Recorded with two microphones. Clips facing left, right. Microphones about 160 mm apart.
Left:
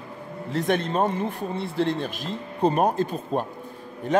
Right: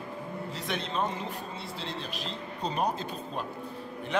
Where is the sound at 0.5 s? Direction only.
50° left (ahead or behind).